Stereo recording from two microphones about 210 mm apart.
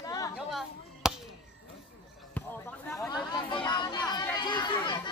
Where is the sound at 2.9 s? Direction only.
15° left (ahead or behind).